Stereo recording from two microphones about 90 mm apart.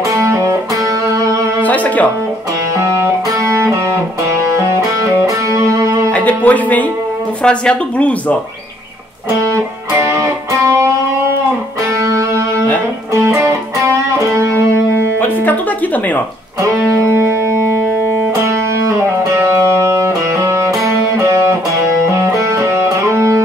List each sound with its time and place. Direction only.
0.1 s music: 30° right (ahead or behind)
1.6 s music: 15° left (ahead or behind)
2.8 s music: 35° right (ahead or behind)
6.1 s music: 15° left (ahead or behind)
7.4 s speech: 10° left (ahead or behind)
10.1 s music: 35° right (ahead or behind)
12.0 s music: 35° right (ahead or behind)
15.0 s music: 20° left (ahead or behind)
18.3 s music: 30° right (ahead or behind)